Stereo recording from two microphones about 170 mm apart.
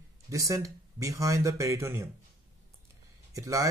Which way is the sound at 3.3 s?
20° right (ahead or behind).